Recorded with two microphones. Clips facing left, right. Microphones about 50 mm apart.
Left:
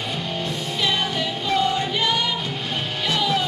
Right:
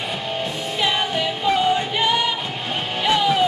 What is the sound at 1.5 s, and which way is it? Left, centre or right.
Music, centre.